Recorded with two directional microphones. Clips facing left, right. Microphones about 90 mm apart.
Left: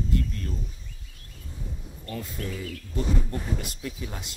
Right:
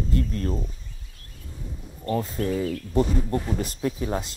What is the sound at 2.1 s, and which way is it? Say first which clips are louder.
Speech: right 9 dB; 35° right (ahead or behind).